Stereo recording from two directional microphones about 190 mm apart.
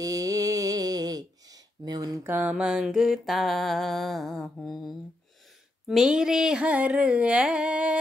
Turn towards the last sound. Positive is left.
turn(degrees=-5)  # may be behind; listen again after turning